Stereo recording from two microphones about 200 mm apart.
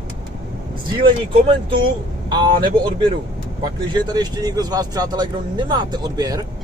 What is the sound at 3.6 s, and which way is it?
Speech, 20° right (ahead or behind).